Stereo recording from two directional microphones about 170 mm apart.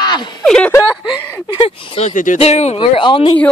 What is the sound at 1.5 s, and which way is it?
Speech, 30° left (ahead or behind).